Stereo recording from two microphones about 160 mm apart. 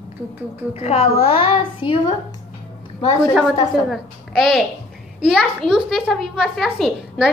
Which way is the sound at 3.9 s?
Centre (ahead or behind).